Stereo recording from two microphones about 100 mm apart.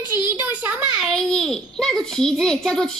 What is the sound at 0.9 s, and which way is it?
Babbling, centre (ahead or behind).